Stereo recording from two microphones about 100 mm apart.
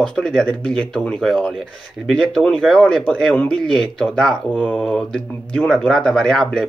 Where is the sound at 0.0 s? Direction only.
5° left (ahead or behind).